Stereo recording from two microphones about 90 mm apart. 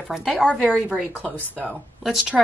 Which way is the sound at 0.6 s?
10° left (ahead or behind).